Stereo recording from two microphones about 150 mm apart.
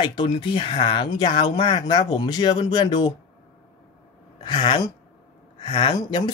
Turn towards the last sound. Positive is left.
turn(degrees=30)  # may be behind; listen again after turning